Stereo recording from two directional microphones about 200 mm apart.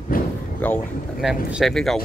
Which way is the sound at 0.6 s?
5° left (ahead or behind).